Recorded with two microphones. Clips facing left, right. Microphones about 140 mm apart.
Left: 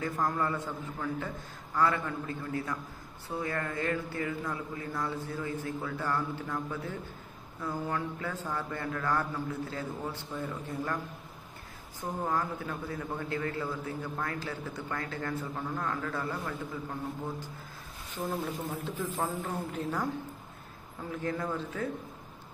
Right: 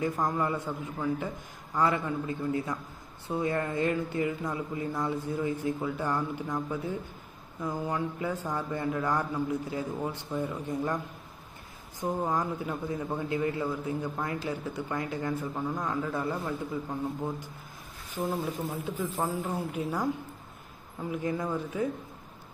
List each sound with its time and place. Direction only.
0.0 s a man's voice: 20° right (ahead or behind)
12.0 s a man's voice: 15° right (ahead or behind)
18.1 s a man's voice: 10° right (ahead or behind)
21.1 s a man's voice: 15° right (ahead or behind)